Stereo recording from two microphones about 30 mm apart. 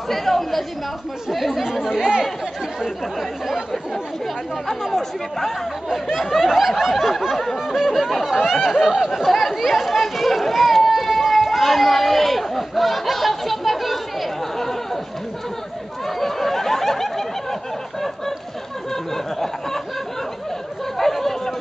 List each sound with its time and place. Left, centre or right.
0.1 s speech: centre
1.3 s snicker: centre
1.7 s speech: centre
2.0 s speech: right
4.6 s speech: centre
5.9 s speech: centre
6.7 s snicker: centre
7.6 s speech: centre
9.3 s snicker: centre
9.6 s speech: centre
14.6 s a sound: centre
16.1 s a sound: centre
19.1 s speech: centre
21.0 s chatter: centre